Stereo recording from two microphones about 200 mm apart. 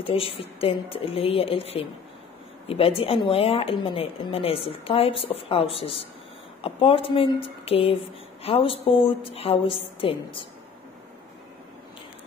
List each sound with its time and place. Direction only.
0.0 s speech: 25° left (ahead or behind)